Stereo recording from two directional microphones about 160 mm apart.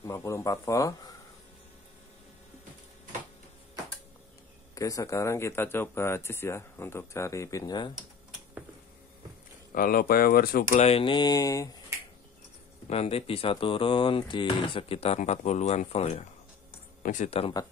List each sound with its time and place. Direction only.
0.0 s speech: 20° left (ahead or behind)
4.7 s speech: 20° left (ahead or behind)
9.8 s speech: 65° left (ahead or behind)
10.7 s speech: 40° left (ahead or behind); by 11.7 s 20° left (ahead or behind)
12.9 s speech: 40° left (ahead or behind)